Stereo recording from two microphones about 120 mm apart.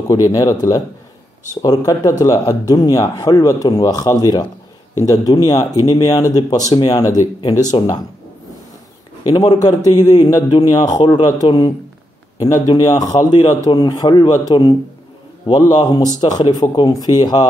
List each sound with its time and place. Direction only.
0.1 s speech: 30° left (ahead or behind)
9.3 s speech: 35° left (ahead or behind)